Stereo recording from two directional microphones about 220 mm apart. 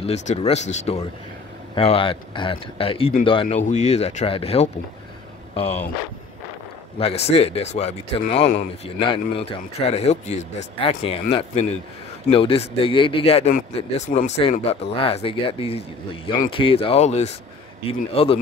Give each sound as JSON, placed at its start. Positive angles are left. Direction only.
{"t": 0.0, "sound": "speech", "side_deg": 30}
{"t": 7.0, "sound": "speech", "side_deg": 25}